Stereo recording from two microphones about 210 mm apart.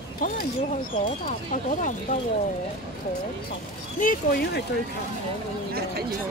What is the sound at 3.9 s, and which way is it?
Speech, 45° left (ahead or behind).